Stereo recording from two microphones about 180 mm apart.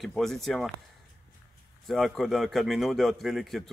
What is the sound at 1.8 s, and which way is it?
Speech, centre (ahead or behind).